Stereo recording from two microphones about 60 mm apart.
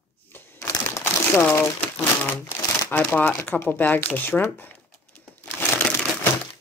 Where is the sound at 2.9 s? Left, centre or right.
Left.